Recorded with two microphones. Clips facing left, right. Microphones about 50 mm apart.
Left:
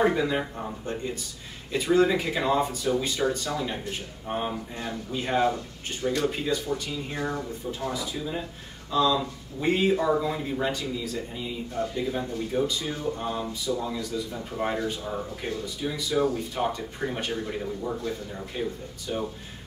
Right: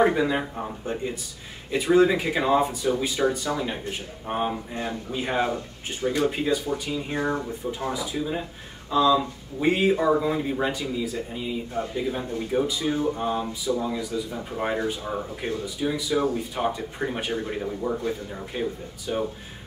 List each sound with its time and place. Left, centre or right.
0.0 s speech: centre